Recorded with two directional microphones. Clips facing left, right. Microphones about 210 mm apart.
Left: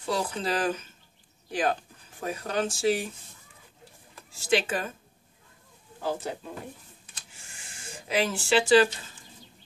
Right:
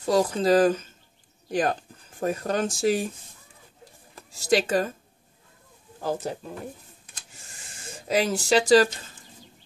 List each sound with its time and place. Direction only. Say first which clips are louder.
0.0 s speech: right 7 dB; 40° right (ahead or behind)
4.3 s speech: right 4 dB; 40° right (ahead or behind)
7.4 s a sound: right 3 dB; 40° right (ahead or behind)